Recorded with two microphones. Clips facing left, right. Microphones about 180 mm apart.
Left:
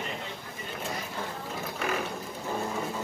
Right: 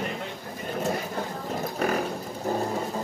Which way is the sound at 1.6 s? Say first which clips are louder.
Right 5 dB; 40° right (ahead or behind).